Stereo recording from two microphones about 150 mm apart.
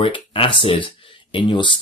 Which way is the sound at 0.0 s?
35° left (ahead or behind).